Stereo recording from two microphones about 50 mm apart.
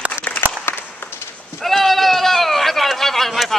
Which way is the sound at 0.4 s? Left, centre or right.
Left.